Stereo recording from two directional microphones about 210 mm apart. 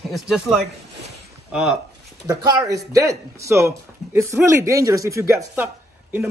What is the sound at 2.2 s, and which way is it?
Speech, 15° right (ahead or behind).